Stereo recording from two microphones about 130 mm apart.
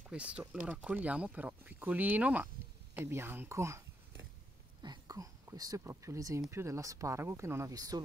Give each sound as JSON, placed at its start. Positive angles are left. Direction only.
{"t": 0.1, "sound": "speech", "side_deg": -10}
{"t": 4.8, "sound": "speech", "side_deg": -30}